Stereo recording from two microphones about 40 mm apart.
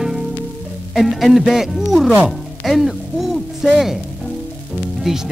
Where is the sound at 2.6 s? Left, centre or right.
Centre.